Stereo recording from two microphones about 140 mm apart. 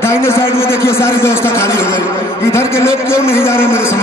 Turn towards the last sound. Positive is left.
turn(degrees=15)  # may be behind; listen again after turning